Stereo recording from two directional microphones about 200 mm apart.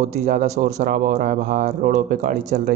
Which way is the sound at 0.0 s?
35° right (ahead or behind).